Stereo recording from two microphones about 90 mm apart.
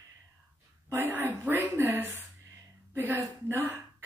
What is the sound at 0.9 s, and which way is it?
Speech, 25° right (ahead or behind).